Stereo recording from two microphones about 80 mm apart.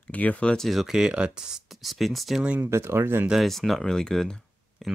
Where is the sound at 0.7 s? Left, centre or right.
Centre.